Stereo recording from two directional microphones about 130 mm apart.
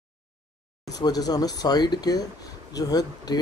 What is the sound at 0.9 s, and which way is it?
Speech, 30° left (ahead or behind).